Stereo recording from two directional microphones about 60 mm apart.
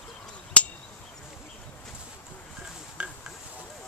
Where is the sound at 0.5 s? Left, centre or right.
Centre.